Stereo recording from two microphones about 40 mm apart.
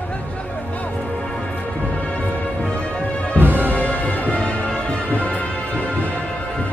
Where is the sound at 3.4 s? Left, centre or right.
Right.